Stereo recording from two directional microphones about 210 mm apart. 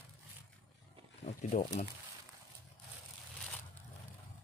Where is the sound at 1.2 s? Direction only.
35° left (ahead or behind).